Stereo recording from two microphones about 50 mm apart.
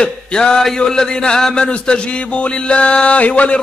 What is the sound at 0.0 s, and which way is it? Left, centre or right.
Speech, centre.